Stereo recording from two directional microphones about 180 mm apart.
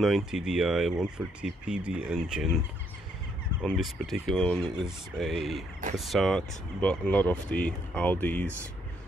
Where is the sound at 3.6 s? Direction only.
5° left (ahead or behind).